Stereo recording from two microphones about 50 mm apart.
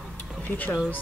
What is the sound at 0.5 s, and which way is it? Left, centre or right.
Speech, left.